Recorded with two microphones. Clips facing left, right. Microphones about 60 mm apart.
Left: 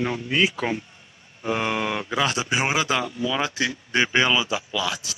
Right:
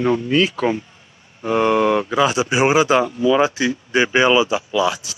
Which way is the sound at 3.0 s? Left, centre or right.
Right.